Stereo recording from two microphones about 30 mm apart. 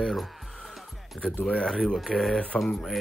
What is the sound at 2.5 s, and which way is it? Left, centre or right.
Speech, centre.